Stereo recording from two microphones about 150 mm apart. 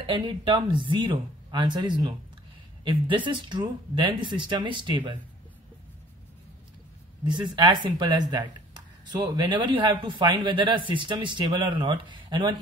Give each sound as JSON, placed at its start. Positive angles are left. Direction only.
{"t": 0.0, "sound": "a man's voice", "side_deg": -30}
{"t": 7.2, "sound": "a man's voice", "side_deg": -30}